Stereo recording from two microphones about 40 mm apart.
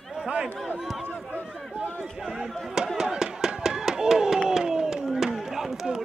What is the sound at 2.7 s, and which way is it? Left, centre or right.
Speech, centre.